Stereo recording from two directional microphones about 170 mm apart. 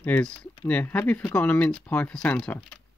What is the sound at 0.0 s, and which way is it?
Speech, 5° left (ahead or behind).